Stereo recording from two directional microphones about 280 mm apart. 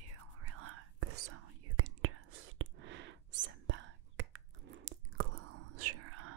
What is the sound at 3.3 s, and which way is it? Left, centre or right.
Biting, right.